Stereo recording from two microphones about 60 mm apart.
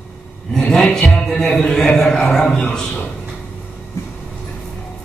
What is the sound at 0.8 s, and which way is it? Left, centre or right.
A man's voice, centre.